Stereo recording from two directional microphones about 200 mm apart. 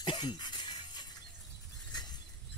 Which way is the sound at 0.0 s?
25° left (ahead or behind).